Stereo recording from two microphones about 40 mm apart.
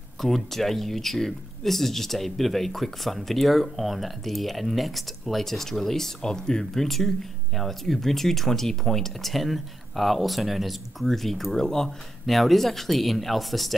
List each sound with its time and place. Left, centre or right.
0.2 s speech: centre